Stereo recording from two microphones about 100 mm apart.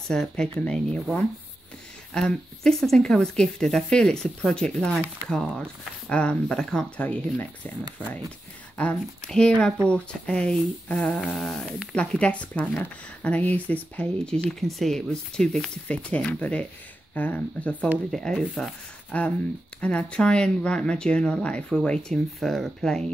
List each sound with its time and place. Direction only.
0.1 s speech: 5° left (ahead or behind)
8.7 s speech: 10° left (ahead or behind)
18.1 s speech: centre (ahead or behind)